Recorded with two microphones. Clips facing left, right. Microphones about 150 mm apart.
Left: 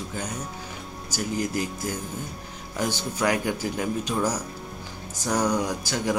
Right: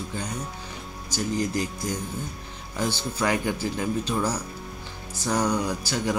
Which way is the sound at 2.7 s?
10° left (ahead or behind).